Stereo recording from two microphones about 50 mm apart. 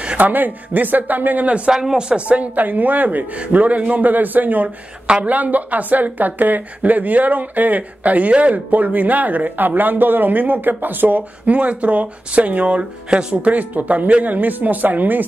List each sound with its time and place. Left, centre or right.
0.0 s a sound: right
0.3 s a woman's voice: right
1.7 s a woman's voice: centre; by 15.2 s right